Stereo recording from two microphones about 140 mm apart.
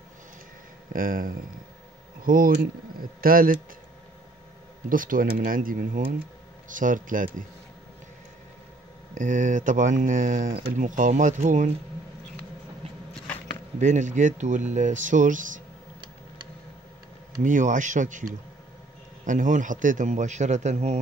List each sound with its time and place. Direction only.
0.9 s speech: 80° right
4.8 s speech: 75° right (ahead or behind)
9.1 s speech: 65° right (ahead or behind)
12.8 s a sound: 45° right (ahead or behind)
13.7 s speech: 60° right (ahead or behind)
17.4 s speech: 65° right (ahead or behind)